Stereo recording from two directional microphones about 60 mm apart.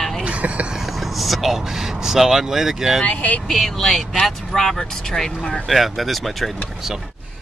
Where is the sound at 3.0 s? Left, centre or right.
Left.